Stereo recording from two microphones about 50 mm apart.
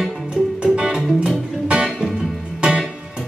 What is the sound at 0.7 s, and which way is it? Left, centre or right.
Music, centre.